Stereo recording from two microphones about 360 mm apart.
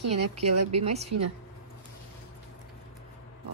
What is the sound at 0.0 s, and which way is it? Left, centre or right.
Speech, right.